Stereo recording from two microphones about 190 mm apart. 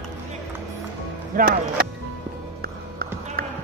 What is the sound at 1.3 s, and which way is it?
Speech, 50° right (ahead or behind).